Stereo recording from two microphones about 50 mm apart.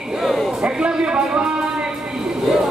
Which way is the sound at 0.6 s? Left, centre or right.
Right.